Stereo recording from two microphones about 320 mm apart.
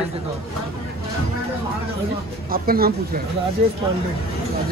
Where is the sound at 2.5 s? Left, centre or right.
Right.